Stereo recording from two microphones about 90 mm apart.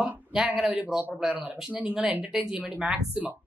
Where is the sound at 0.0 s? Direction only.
10° right (ahead or behind).